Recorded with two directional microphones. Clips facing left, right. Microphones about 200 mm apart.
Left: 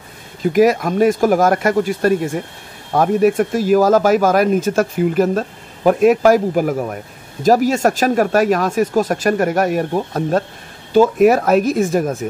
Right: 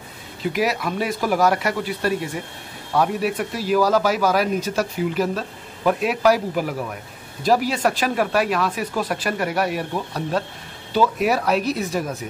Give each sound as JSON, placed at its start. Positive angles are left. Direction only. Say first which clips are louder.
{"t": 0.4, "sound": "speech", "louder": "left 9 dB", "side_deg": 45}